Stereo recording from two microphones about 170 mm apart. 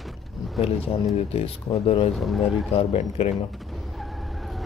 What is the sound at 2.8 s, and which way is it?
Speech, 40° left (ahead or behind).